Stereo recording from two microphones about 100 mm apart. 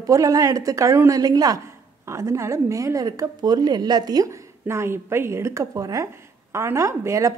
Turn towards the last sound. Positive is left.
turn(degrees=-30)  # may be behind; listen again after turning